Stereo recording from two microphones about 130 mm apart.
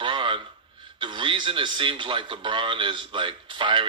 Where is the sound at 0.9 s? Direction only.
40° right (ahead or behind).